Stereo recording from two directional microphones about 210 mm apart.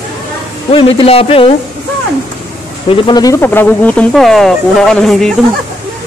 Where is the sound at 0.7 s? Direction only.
25° left (ahead or behind).